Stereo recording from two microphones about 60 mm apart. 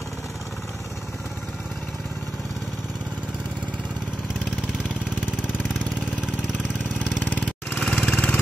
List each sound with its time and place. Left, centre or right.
7.2 s lawn mower: left
7.8 s lawn mower: centre